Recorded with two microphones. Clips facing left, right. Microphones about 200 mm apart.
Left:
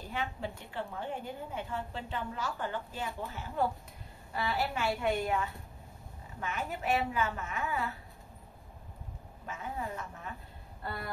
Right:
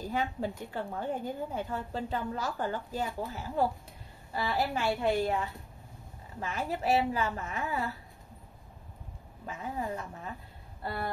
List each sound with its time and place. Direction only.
0.1 s a woman's voice: 40° right (ahead or behind)
6.4 s a woman's voice: 35° right (ahead or behind)
9.5 s a woman's voice: 35° right (ahead or behind)